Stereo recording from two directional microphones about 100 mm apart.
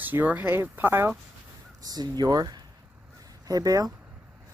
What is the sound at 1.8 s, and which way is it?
Speech, 40° right (ahead or behind).